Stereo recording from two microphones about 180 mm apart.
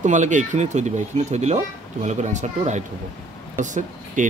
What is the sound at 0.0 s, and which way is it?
Speech, 40° right (ahead or behind).